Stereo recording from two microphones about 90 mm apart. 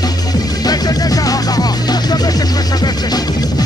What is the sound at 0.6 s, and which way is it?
Music, 45° left (ahead or behind).